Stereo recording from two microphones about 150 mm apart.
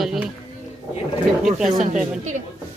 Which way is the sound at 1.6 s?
60° right (ahead or behind).